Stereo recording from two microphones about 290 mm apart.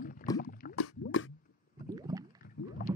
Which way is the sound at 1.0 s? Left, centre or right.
Left.